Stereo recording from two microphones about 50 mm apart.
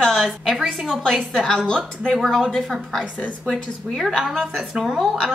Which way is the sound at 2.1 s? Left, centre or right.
Centre.